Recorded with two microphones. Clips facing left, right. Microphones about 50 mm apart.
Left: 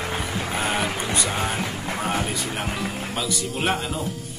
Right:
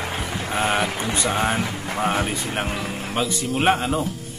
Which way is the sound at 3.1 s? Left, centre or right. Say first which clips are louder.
Right 3 dB; right.